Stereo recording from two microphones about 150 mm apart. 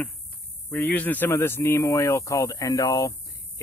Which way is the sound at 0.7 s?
10° left (ahead or behind).